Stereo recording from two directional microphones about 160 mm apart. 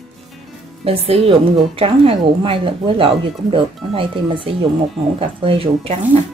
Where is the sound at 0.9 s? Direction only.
35° right (ahead or behind).